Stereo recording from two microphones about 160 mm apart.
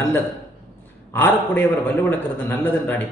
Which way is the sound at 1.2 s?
15° left (ahead or behind).